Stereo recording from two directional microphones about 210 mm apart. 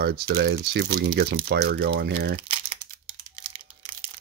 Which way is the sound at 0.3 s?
50° right (ahead or behind).